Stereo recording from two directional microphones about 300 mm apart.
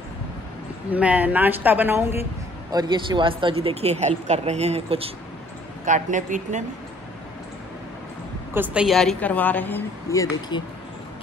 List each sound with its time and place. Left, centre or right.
0.9 s a woman's voice: centre; by 6.6 s right
8.5 s a woman's voice: centre